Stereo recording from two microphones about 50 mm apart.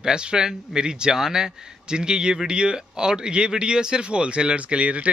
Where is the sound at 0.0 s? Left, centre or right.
Centre.